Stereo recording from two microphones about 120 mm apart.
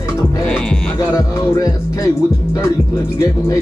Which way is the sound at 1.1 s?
25° left (ahead or behind).